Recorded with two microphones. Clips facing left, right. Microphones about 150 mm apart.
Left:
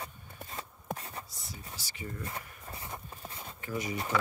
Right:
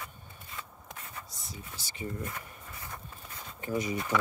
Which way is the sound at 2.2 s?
30° left (ahead or behind).